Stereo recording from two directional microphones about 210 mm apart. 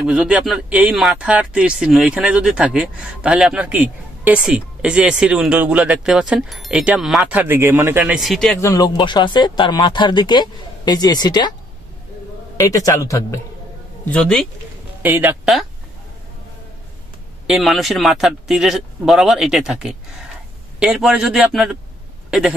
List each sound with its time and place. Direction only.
0.0 s speech: 5° right (ahead or behind)
8.5 s speech: 15° left (ahead or behind)
12.5 s a man's voice: 15° left (ahead or behind)
14.0 s speech: 5° left (ahead or behind)
15.0 s speech: 10° right (ahead or behind)
17.5 s speech: centre (ahead or behind)